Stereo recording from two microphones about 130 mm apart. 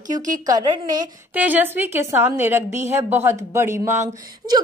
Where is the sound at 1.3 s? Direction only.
15° right (ahead or behind).